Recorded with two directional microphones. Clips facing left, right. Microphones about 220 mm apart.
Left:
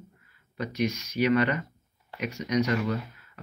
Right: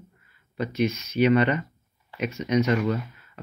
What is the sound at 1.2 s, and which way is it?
Speech, 25° right (ahead or behind).